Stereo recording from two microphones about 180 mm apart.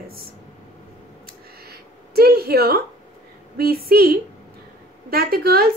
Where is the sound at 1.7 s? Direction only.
60° right (ahead or behind).